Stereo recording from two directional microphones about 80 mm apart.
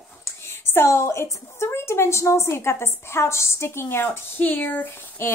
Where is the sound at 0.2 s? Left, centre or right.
Left.